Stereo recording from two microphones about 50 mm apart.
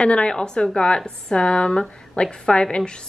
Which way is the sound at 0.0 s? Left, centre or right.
Centre.